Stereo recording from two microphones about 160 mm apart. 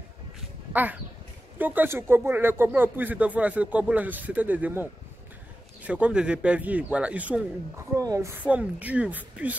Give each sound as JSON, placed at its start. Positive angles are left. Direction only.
{"t": 0.7, "sound": "speech", "side_deg": -10}
{"t": 5.9, "sound": "speech", "side_deg": -10}
{"t": 7.9, "sound": "a woman's voice", "side_deg": -20}
{"t": 8.5, "sound": "speech", "side_deg": -10}